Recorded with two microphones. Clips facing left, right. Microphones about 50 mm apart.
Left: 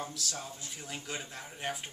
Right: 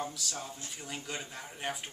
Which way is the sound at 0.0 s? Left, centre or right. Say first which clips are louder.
Right 1 dB; centre.